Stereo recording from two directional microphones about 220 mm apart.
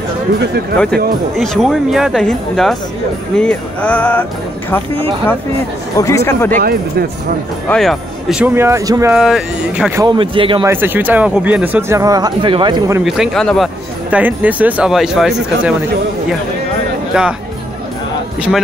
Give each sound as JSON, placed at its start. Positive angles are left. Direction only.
{"t": 1.4, "sound": "speech", "side_deg": 0}
{"t": 3.3, "sound": "music", "side_deg": 5}
{"t": 5.9, "sound": "music", "side_deg": 15}
{"t": 6.5, "sound": "speech", "side_deg": -45}
{"t": 7.6, "sound": "speech", "side_deg": 5}
{"t": 9.1, "sound": "speech", "side_deg": -5}
{"t": 10.0, "sound": "speech", "side_deg": -25}
{"t": 10.6, "sound": "speech", "side_deg": -10}
{"t": 13.0, "sound": "speech", "side_deg": 0}
{"t": 17.1, "sound": "speech", "side_deg": -5}